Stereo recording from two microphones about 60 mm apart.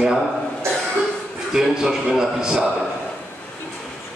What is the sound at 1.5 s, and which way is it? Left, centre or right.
A man's voice, centre.